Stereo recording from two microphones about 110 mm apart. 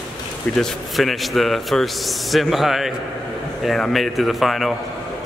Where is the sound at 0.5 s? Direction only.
Centre (ahead or behind).